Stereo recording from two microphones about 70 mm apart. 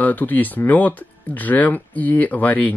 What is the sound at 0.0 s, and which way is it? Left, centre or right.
Speech, left.